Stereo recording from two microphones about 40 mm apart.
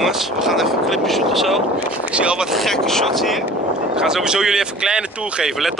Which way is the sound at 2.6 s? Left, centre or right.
Centre.